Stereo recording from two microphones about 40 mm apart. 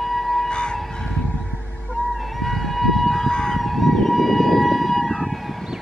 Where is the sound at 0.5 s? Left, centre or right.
Left.